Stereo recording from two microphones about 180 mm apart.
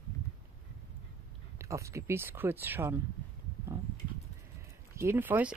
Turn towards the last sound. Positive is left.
turn(degrees=-10)  # may be behind; listen again after turning